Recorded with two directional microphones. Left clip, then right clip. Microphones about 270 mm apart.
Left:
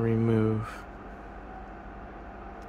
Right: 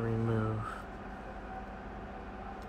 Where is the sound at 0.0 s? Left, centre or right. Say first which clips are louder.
Left 8 dB; left.